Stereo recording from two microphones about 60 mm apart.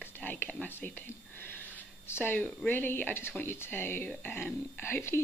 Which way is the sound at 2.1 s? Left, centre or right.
Left.